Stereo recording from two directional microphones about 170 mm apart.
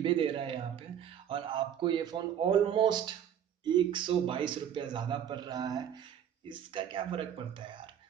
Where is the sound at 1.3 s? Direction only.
30° right (ahead or behind).